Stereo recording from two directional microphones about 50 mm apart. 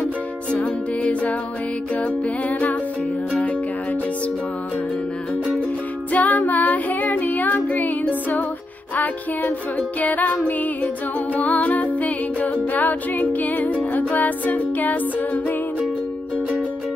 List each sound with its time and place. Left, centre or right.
0.5 s music: left
6.1 s music: left